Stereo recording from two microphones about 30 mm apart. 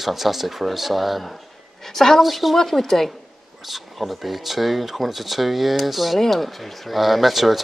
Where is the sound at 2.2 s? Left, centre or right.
Centre.